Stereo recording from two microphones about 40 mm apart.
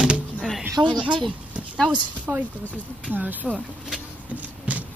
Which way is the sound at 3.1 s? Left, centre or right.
Right.